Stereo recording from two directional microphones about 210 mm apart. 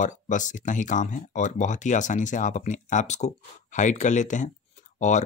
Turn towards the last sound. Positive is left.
turn(degrees=35)  # may be behind; listen again after turning